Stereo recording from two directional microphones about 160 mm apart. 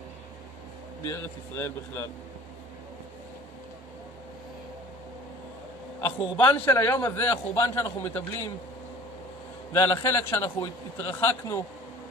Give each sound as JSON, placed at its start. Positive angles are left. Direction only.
{"t": 1.0, "sound": "a man's voice", "side_deg": 15}
{"t": 6.0, "sound": "a man's voice", "side_deg": 15}
{"t": 9.7, "sound": "a man's voice", "side_deg": 15}